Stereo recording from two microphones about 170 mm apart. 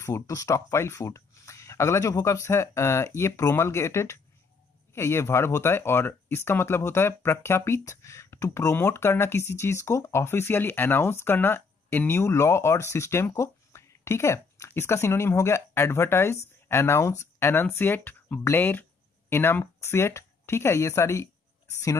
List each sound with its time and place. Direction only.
0.0 s speech: 20° left (ahead or behind)